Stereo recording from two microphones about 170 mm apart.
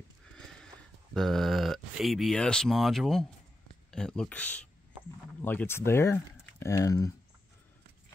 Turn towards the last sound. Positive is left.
turn(degrees=20)  # may be behind; listen again after turning